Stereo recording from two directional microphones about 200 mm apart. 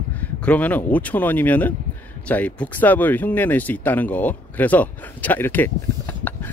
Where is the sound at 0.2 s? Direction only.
10° left (ahead or behind).